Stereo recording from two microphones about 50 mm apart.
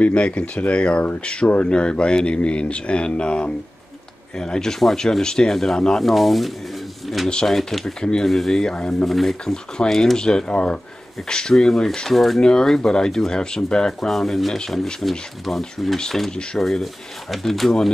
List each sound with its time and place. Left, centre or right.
0.0 s speech: left; by 6.0 s centre
6.0 s speech: centre
8.0 s speech: centre
8.3 s speech: centre
12.4 s speech: centre